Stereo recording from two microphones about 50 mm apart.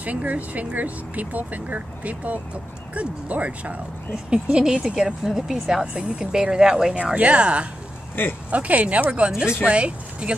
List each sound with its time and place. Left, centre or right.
0.0 s speech: right